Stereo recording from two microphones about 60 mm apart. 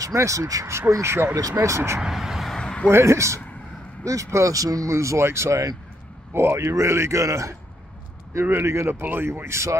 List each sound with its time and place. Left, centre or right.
0.0 s speech: right
0.7 s speech: right
2.0 s speech: centre
2.5 s a sound: centre
2.9 s speech: right
6.3 s speech: right
8.6 s speech: right